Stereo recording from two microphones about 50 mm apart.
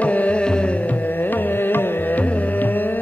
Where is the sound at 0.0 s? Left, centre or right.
Left.